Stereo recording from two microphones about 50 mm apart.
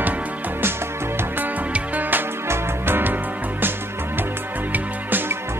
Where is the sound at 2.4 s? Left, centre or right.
Right.